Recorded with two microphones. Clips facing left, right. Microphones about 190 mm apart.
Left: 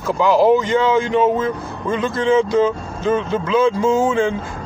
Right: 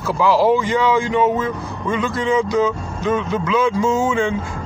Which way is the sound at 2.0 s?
30° left (ahead or behind).